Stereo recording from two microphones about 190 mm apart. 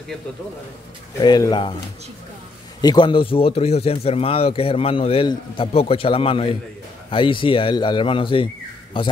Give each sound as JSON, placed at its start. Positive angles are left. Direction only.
{"t": 1.2, "sound": "speech", "side_deg": 20}
{"t": 2.8, "sound": "speech", "side_deg": 20}